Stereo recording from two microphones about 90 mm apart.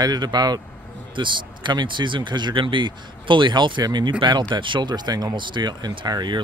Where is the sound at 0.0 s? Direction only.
50° right (ahead or behind).